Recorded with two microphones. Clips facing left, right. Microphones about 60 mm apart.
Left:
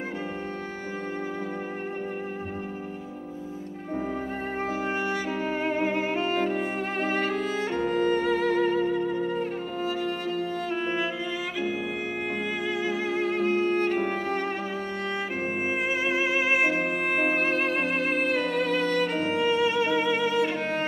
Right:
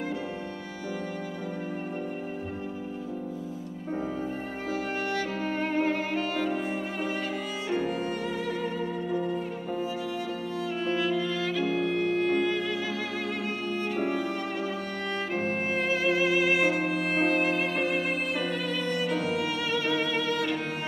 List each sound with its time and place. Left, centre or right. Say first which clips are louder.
4.6 s music: left 1 dB; left
6.5 s music: left 2 dB; left
10.8 s music: right 1 dB; left
15.1 s music: right 3 dB; centre